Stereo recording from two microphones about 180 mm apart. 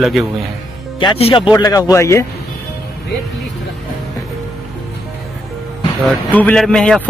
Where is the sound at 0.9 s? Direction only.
30° left (ahead or behind).